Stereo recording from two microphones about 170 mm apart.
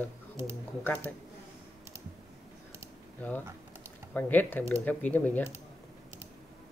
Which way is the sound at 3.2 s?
5° left (ahead or behind).